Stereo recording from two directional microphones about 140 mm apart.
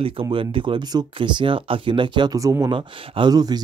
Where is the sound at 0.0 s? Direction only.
40° right (ahead or behind).